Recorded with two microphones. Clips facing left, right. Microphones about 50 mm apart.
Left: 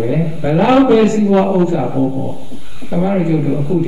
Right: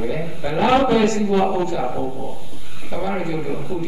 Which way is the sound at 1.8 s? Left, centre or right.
Centre.